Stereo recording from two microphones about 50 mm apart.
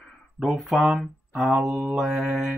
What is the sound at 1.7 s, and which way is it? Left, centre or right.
Mantra, right.